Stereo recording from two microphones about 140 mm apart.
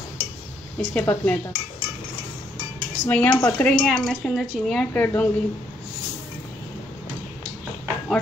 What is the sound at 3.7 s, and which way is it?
Speech, centre (ahead or behind).